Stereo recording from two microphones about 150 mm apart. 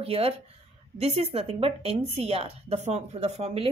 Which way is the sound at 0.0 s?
40° right (ahead or behind).